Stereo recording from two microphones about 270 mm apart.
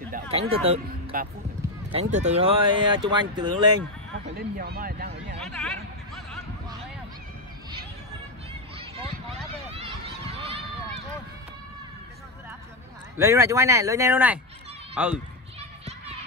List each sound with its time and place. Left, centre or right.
0.1 s speech: right
4.4 s speech: right
5.4 s a sound: centre
8.7 s run: right
13.2 s speech: centre